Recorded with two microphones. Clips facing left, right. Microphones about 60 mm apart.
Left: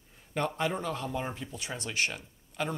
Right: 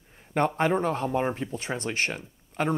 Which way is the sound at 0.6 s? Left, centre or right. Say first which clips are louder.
Right 7 dB; right.